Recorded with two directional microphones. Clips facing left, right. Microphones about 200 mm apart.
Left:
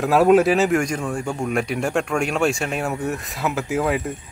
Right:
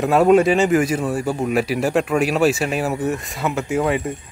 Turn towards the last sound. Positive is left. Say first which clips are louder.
# right 2 dB
turn(degrees=0)  # may be behind; listen again after turning